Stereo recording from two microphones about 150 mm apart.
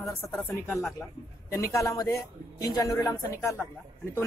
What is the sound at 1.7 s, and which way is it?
A woman's voice, 20° left (ahead or behind).